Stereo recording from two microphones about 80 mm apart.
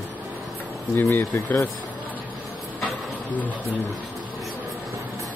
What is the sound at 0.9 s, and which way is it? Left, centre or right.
Speech, left.